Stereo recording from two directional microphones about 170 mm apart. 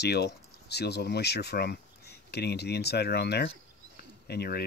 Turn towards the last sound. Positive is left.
turn(degrees=70)  # may be behind; listen again after turning